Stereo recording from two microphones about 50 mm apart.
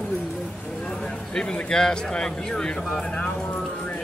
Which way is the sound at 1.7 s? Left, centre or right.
Centre.